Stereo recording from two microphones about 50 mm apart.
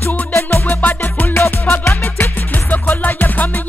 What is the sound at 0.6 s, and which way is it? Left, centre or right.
Music, left.